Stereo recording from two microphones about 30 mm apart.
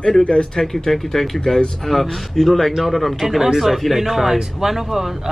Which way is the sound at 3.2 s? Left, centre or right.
Centre.